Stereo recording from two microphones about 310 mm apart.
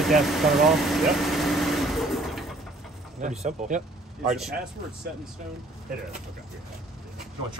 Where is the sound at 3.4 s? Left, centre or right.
Right.